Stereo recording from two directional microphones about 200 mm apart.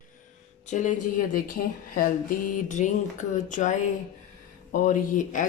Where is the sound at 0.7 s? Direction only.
40° left (ahead or behind).